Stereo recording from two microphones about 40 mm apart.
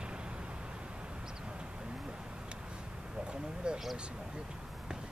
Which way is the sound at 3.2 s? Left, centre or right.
Right.